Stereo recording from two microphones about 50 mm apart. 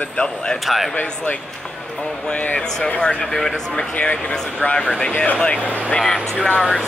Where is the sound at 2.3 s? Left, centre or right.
Left.